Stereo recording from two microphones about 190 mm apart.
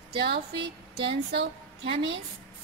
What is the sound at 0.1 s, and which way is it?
Speech, 60° right (ahead or behind).